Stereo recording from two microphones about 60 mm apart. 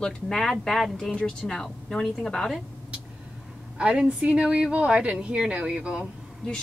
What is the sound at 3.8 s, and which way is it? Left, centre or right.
A woman's voice, centre.